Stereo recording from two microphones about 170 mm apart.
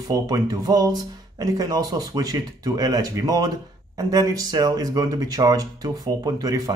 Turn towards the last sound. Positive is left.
turn(degrees=-20)  # may be behind; listen again after turning